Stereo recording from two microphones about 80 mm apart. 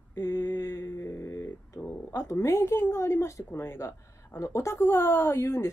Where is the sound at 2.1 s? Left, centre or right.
Left.